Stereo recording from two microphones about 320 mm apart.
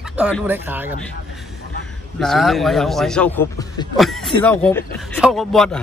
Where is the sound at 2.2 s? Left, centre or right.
Centre.